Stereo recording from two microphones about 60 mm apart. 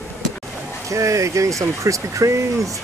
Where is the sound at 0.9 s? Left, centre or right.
Right.